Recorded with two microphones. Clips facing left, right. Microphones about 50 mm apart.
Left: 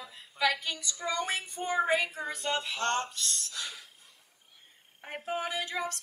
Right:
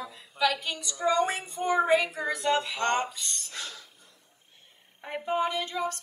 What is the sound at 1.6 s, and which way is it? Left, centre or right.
Speech, right.